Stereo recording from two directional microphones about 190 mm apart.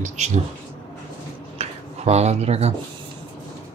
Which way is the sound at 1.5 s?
35° right (ahead or behind).